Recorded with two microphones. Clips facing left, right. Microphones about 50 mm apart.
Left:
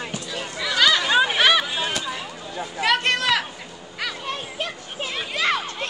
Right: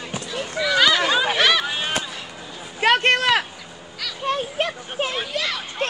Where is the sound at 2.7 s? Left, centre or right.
Right.